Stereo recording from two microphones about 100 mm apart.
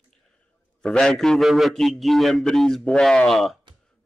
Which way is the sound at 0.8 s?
5° left (ahead or behind).